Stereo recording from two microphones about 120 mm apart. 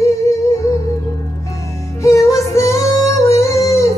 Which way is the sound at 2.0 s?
25° left (ahead or behind).